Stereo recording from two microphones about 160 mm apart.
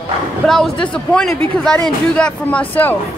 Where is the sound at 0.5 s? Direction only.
5° left (ahead or behind).